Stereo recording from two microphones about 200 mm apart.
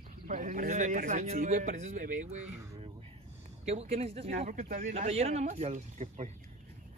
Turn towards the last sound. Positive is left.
turn(degrees=-35)  # may be behind; listen again after turning